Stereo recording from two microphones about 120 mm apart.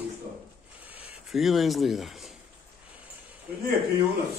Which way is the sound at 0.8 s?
15° right (ahead or behind).